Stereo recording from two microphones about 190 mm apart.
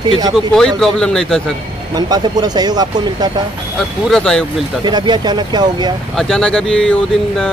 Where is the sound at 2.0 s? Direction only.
20° right (ahead or behind).